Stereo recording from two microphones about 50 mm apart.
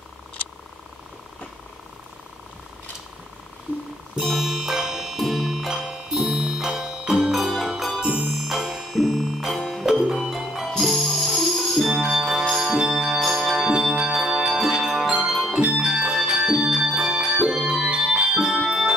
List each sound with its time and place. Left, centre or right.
4.2 s music: centre
8.0 s music: right
8.5 s music: centre
9.6 s music: centre
9.8 s music: centre
12.7 s music: centre
15.6 s music: centre
17.6 s organ: centre
18.3 s music: centre